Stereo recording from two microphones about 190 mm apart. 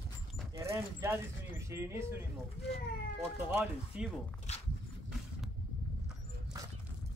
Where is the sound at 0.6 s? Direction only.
15° right (ahead or behind).